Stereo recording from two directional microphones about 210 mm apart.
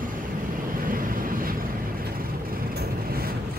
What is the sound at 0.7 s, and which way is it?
Vehicle, 40° right (ahead or behind).